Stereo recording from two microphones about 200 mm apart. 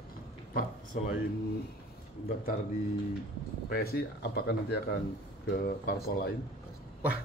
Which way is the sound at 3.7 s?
50° left (ahead or behind).